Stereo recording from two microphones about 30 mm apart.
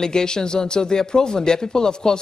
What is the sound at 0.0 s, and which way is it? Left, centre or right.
Speech, left.